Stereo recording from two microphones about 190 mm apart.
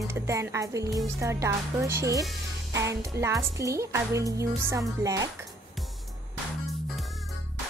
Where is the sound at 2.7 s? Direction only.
15° right (ahead or behind).